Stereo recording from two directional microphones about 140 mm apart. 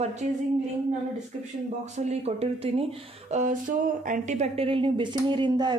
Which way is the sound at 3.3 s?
70° right (ahead or behind).